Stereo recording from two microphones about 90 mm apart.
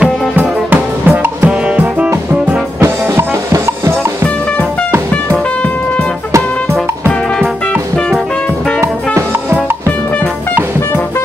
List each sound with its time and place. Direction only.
0.0 s music: 15° right (ahead or behind)
2.8 s music: 35° right (ahead or behind)
6.7 s music: 5° left (ahead or behind)
8.8 s music: 30° right (ahead or behind)